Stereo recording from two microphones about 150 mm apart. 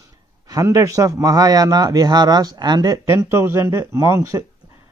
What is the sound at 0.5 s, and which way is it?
Speech, 25° right (ahead or behind).